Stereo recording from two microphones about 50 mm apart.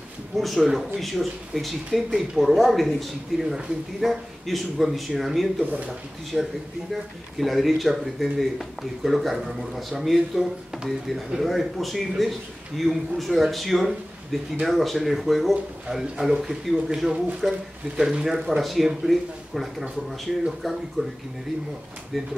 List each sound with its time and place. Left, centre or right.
0.4 s speech: centre
1.9 s a man's voice: centre
2.3 s speech: centre
6.3 s a man's voice: centre
6.9 s a man's voice: centre
22.1 s speech: centre